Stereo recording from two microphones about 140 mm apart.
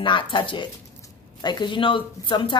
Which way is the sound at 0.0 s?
35° left (ahead or behind).